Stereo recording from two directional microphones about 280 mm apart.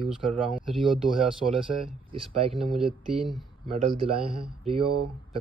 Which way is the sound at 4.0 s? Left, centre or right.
Centre.